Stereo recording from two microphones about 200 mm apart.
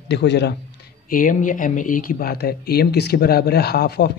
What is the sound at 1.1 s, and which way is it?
Speech, 40° left (ahead or behind).